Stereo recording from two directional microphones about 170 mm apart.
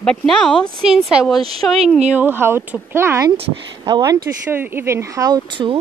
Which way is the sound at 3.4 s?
25° right (ahead or behind).